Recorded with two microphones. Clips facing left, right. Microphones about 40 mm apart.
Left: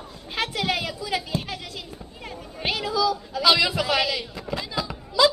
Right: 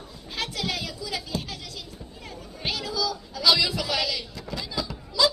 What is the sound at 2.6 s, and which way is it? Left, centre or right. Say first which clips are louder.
A man's voice: left 5 dB; left.